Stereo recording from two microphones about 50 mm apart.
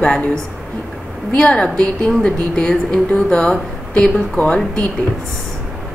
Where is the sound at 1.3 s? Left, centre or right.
Left.